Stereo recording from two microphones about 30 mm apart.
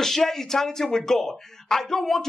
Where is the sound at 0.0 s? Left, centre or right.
Centre.